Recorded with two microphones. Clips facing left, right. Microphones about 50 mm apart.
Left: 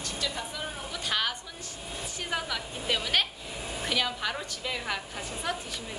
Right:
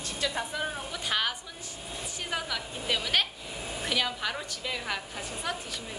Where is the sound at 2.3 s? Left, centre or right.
Centre.